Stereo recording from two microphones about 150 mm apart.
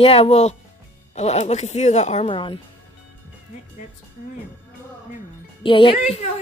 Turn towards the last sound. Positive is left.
turn(degrees=40)  # may be behind; listen again after turning